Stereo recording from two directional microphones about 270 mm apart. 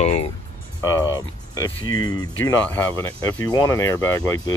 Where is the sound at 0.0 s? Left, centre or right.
Left.